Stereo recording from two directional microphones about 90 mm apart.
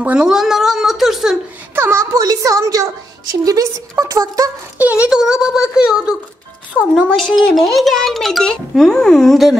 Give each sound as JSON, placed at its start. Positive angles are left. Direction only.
{"t": 0.0, "sound": "a sound", "side_deg": -10}
{"t": 1.8, "sound": "a woman's voice", "side_deg": -30}
{"t": 5.0, "sound": "speech", "side_deg": -5}
{"t": 6.7, "sound": "a child's voice", "side_deg": 5}